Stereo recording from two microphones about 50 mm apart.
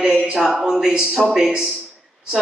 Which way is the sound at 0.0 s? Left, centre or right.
Centre.